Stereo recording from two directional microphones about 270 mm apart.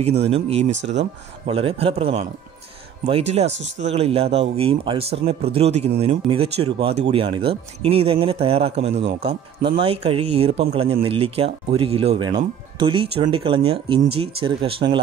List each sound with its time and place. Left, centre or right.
0.0 s speech: right